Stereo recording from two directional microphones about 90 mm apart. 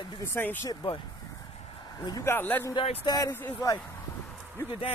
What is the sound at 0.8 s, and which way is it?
Speech, 80° left.